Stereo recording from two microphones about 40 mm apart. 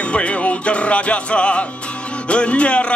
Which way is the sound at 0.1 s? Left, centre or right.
Left.